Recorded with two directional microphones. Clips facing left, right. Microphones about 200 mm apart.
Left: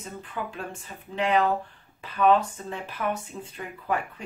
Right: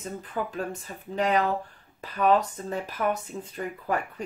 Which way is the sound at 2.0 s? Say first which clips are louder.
Left 1 dB; 40° right (ahead or behind).